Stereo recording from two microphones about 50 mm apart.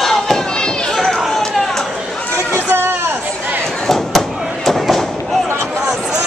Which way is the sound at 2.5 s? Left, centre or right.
Right.